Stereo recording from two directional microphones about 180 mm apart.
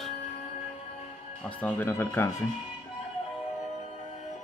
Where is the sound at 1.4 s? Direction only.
10° left (ahead or behind).